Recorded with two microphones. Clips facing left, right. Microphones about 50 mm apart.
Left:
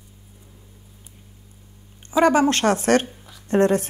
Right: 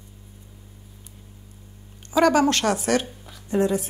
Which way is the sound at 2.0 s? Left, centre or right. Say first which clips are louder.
Left 1 dB; left.